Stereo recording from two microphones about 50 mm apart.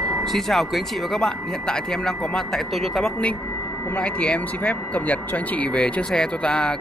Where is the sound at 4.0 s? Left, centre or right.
Left.